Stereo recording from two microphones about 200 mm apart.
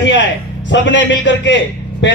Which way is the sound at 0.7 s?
65° left (ahead or behind).